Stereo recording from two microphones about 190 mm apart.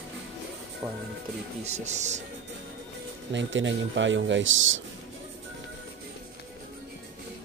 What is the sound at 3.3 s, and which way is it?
A man's voice, 75° right (ahead or behind).